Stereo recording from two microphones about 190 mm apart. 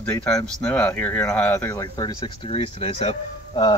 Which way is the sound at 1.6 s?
20° left (ahead or behind).